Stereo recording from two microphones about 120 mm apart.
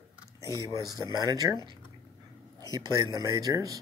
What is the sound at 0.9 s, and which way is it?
Speech, 30° right (ahead or behind).